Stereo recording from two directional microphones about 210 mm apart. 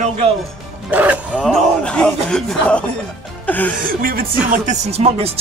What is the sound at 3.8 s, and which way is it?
Speech, 45° right (ahead or behind).